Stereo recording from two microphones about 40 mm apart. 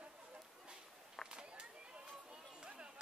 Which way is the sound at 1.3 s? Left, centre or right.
Right.